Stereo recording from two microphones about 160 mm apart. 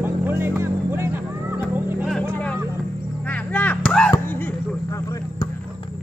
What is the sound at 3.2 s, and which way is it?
Artillery fire, 10° left (ahead or behind).